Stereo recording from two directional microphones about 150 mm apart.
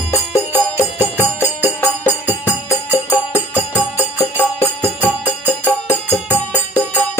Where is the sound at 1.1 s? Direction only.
15° left (ahead or behind).